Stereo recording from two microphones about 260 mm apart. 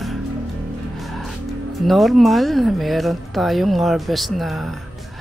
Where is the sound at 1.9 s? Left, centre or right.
Centre.